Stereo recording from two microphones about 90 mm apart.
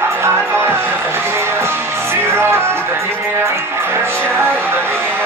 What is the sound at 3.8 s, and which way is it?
Music, 25° right (ahead or behind).